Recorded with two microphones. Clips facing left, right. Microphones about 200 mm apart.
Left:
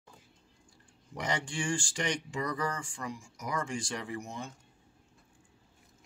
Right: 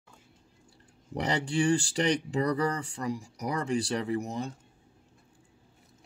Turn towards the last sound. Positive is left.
turn(degrees=-40)  # may be behind; listen again after turning